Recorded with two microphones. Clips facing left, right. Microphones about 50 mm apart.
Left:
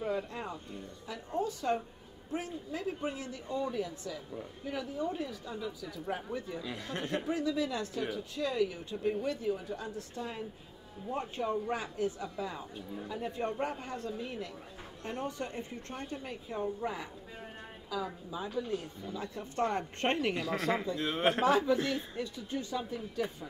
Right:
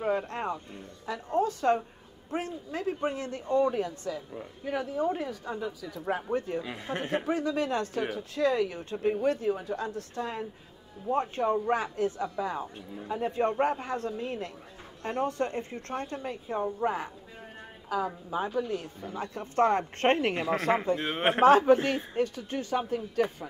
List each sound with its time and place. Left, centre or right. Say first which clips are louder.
0.0 s a woman's voice: right 6 dB; right
6.6 s speech: right 4 dB; right
7.0 s speech: right 4 dB; right
7.2 s speech: right 3 dB; right
20.3 s speech: right 5 dB; right
21.0 s speech: right 2 dB; right
21.4 s speech: right 12 dB; right